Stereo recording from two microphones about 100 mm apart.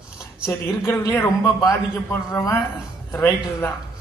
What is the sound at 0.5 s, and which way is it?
Speech, 25° left (ahead or behind).